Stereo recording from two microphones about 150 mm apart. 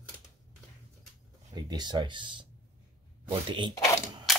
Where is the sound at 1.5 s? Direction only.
25° right (ahead or behind).